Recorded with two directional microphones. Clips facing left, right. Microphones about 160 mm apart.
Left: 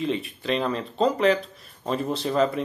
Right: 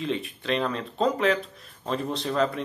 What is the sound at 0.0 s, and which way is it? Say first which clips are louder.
Speech: left 2 dB; centre (ahead or behind).